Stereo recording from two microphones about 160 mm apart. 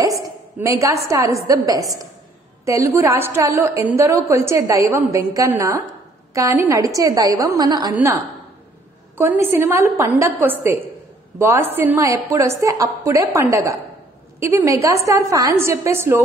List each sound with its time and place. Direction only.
0.0 s a woman's voice: 20° right (ahead or behind)